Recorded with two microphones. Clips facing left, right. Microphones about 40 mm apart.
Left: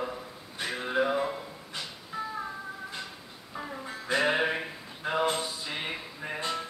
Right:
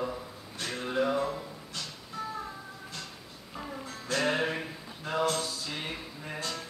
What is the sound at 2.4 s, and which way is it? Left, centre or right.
Music, centre.